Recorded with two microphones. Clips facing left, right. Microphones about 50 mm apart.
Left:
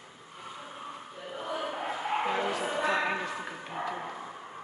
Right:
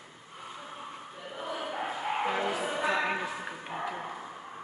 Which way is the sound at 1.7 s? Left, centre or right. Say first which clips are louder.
Right 1 dB; centre.